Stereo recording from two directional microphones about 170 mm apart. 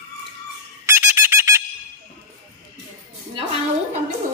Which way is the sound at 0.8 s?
15° right (ahead or behind).